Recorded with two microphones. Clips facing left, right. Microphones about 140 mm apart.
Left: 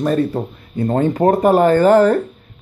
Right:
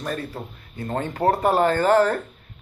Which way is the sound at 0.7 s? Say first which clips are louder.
Left 10 dB; 30° left (ahead or behind).